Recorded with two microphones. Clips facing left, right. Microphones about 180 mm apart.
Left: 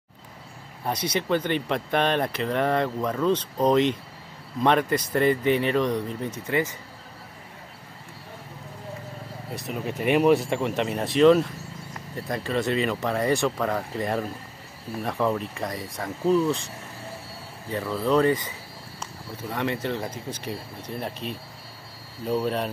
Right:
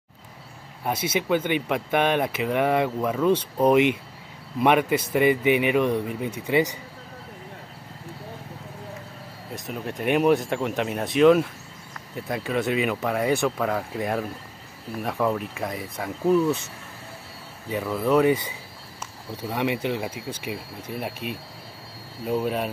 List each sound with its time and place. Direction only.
0.8 s speech: 5° right (ahead or behind)
9.7 s speech: centre (ahead or behind)
17.6 s speech: 10° right (ahead or behind)